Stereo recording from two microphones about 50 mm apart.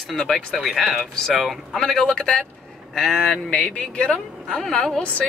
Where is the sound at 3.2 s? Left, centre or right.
Centre.